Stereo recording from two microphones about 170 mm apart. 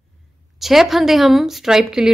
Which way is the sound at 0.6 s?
Centre (ahead or behind).